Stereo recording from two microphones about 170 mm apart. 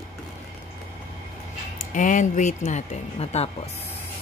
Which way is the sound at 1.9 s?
50° left (ahead or behind).